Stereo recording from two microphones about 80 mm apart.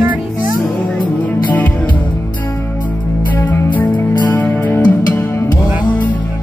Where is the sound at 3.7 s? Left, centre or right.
Left.